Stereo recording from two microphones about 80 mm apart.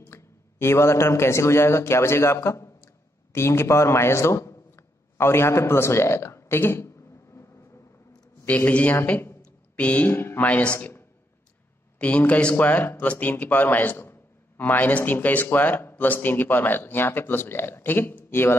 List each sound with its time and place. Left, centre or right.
0.0 s a man's voice: left
8.5 s a man's voice: centre
10.1 s speech: left
10.4 s speech: centre
10.8 s a sound: left
12.0 s a man's voice: centre